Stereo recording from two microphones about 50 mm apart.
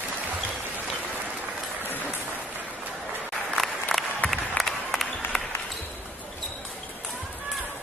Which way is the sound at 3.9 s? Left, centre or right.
Centre.